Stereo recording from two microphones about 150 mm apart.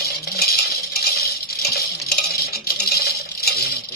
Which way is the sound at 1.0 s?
90° left.